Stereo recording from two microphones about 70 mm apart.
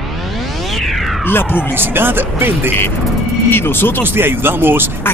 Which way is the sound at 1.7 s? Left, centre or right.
Right.